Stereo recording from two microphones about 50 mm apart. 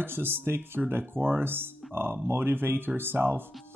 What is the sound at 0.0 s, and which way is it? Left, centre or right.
Speech, right.